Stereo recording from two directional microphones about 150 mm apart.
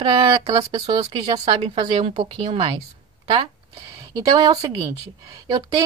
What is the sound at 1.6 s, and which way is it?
Speech, 40° right (ahead or behind).